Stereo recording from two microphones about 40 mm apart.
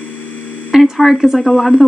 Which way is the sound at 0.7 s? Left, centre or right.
Centre.